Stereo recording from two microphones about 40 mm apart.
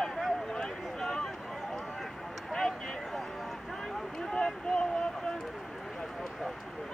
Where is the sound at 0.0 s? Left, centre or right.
Centre.